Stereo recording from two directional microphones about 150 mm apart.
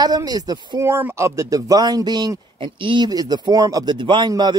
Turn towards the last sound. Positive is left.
turn(degrees=-30)  # may be behind; listen again after turning